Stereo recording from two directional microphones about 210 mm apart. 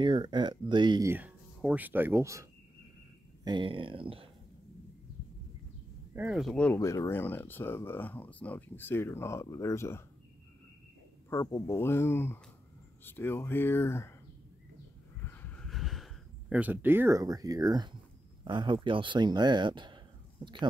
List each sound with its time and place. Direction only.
0.0 s speech: 20° right (ahead or behind)
3.4 s speech: 25° right (ahead or behind)
6.1 s speech: 5° right (ahead or behind); by 10.0 s 10° left (ahead or behind)
11.2 s speech: 15° left (ahead or behind)
15.2 s a sound: 10° left (ahead or behind); by 17.9 s 20° right (ahead or behind)
18.4 s speech: 20° right (ahead or behind)